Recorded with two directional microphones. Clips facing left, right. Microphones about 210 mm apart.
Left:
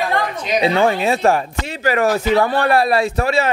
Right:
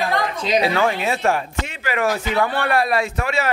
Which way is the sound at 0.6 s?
30° left (ahead or behind).